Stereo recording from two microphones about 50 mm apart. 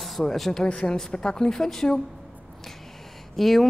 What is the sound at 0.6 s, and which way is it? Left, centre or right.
A woman's voice, centre.